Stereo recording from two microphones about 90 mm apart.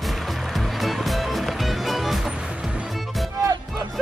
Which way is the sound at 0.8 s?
Centre (ahead or behind).